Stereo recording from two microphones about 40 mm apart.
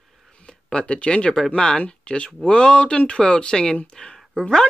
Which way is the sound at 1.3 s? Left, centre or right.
Centre.